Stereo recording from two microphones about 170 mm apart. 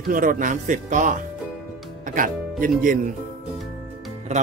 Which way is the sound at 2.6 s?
55° right (ahead or behind).